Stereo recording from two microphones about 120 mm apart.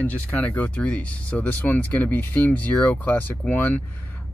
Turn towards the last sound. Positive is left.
turn(degrees=15)  # may be behind; listen again after turning